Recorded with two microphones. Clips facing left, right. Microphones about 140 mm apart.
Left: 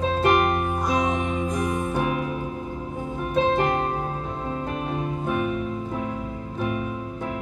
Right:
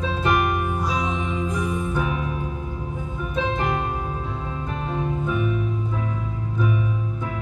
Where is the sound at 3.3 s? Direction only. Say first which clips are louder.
Left 5 dB; 45° left (ahead or behind).